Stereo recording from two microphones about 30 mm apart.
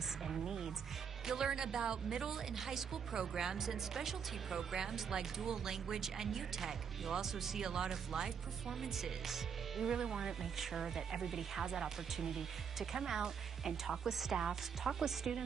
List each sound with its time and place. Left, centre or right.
0.2 s music: centre
1.2 s a woman's voice: centre
9.8 s speech: right
10.4 s a woman's voice: centre